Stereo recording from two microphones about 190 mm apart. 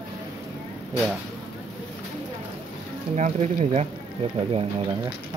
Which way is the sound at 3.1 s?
35° right (ahead or behind).